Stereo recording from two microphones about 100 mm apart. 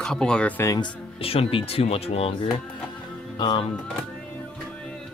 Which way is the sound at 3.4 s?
50° left (ahead or behind).